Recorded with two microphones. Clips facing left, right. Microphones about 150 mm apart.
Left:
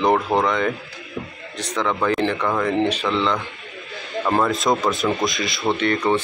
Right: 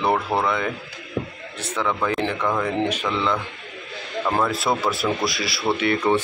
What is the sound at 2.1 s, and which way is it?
Speech, 10° right (ahead or behind).